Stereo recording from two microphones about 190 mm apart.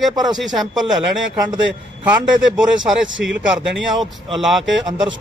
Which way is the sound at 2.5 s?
5° right (ahead or behind).